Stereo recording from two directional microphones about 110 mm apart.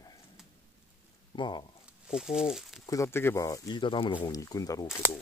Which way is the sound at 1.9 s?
5° right (ahead or behind).